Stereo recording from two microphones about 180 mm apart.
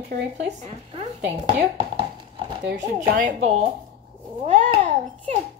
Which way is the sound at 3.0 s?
45° right (ahead or behind).